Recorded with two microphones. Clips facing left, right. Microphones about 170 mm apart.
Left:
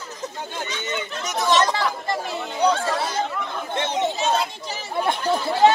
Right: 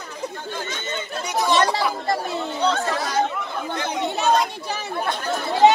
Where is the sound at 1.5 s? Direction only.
10° right (ahead or behind).